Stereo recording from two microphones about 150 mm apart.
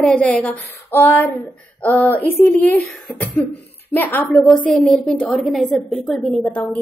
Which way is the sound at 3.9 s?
15° left (ahead or behind).